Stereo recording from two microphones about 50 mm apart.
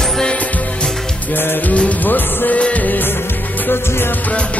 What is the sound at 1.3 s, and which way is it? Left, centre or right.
Music, left.